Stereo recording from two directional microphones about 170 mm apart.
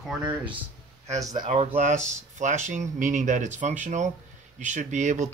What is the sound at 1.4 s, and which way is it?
Speech, 45° right (ahead or behind).